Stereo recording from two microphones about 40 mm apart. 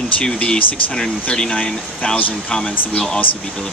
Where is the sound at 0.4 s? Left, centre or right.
Left.